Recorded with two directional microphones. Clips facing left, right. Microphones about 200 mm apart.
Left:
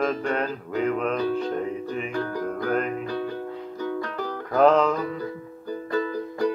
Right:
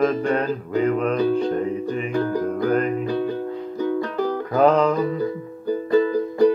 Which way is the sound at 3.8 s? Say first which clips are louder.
Right 7 dB; 20° right (ahead or behind).